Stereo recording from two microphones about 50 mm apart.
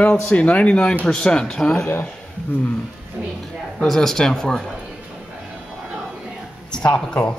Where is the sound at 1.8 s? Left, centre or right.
Left.